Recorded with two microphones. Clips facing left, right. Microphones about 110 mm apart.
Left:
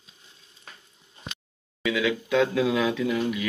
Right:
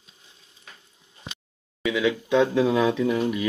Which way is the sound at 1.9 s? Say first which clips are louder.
Right 2 dB; 20° right (ahead or behind).